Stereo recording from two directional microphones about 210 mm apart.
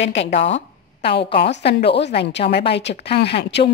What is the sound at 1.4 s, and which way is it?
A woman's voice, 55° left (ahead or behind).